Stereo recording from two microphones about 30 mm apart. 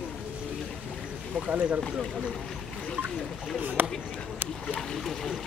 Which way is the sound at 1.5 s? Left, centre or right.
Right.